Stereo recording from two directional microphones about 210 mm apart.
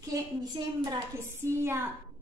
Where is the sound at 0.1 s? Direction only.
15° right (ahead or behind).